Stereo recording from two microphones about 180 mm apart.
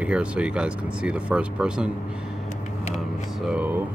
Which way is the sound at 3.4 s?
5° right (ahead or behind).